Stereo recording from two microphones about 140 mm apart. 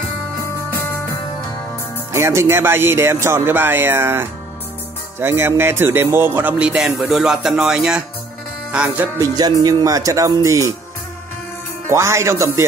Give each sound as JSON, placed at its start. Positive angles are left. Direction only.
{"t": 2.1, "sound": "speech", "side_deg": -20}
{"t": 9.2, "sound": "speech", "side_deg": -30}
{"t": 11.9, "sound": "speech", "side_deg": -20}